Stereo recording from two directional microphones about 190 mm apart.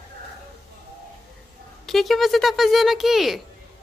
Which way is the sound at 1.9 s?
Centre (ahead or behind).